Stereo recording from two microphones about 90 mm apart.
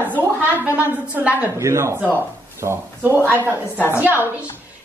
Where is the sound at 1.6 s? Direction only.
35° right (ahead or behind).